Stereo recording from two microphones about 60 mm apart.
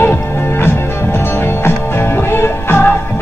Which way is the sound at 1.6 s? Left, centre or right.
Left.